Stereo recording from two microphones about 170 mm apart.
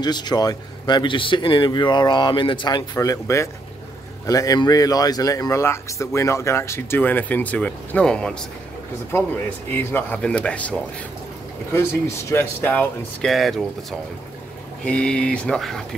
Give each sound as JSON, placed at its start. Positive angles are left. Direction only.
{"t": 0.0, "sound": "speech", "side_deg": 25}
{"t": 9.8, "sound": "speech", "side_deg": 10}
{"t": 13.3, "sound": "speech", "side_deg": 0}
{"t": 14.9, "sound": "speech", "side_deg": 5}